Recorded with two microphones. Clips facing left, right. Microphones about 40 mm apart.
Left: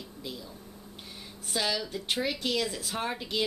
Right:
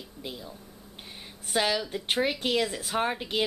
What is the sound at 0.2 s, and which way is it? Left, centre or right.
Speech, right.